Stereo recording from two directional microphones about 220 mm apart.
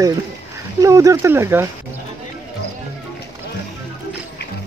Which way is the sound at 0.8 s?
15° right (ahead or behind).